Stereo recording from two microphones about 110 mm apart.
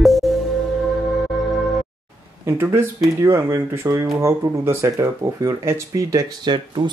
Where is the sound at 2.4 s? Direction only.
20° right (ahead or behind).